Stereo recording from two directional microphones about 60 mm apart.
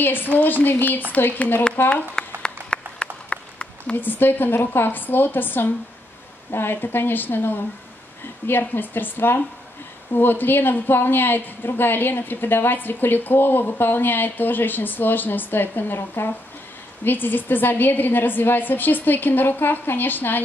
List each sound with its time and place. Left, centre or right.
0.0 s a woman's voice: left
2.4 s a sound: centre
3.9 s a woman's voice: left